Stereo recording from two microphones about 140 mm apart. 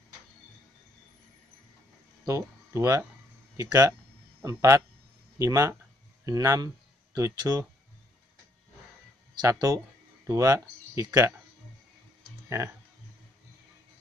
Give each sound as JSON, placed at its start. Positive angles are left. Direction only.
{"t": 2.2, "sound": "speech", "side_deg": -20}
{"t": 4.4, "sound": "a man's voice", "side_deg": -20}
{"t": 9.3, "sound": "speech", "side_deg": -25}
{"t": 12.4, "sound": "speech", "side_deg": -20}